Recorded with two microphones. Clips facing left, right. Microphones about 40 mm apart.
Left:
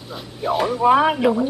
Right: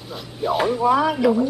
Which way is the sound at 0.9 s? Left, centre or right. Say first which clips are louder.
Left 4 dB; left.